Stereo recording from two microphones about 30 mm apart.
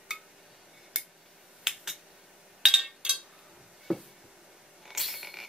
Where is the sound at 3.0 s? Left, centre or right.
Right.